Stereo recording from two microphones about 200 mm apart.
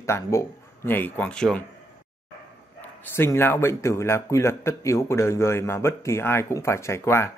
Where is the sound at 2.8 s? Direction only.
10° left (ahead or behind).